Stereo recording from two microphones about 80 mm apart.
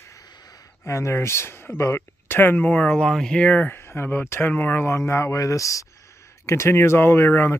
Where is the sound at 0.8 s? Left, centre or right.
Left.